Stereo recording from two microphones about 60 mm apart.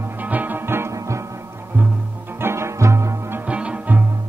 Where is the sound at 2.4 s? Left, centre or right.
Right.